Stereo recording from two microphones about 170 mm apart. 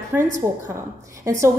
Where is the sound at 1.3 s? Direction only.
15° right (ahead or behind).